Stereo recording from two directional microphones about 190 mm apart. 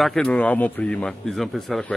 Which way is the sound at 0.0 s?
5° left (ahead or behind).